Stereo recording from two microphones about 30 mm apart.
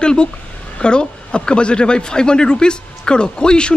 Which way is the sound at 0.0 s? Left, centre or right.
Left.